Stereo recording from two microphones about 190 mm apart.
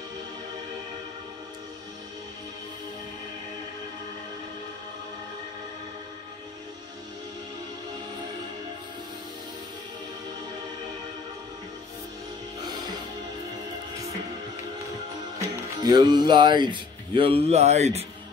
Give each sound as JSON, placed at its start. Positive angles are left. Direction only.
{"t": 15.8, "sound": "speech", "side_deg": -20}